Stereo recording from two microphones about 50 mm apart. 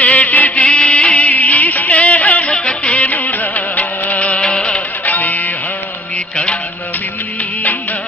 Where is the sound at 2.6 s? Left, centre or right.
Left.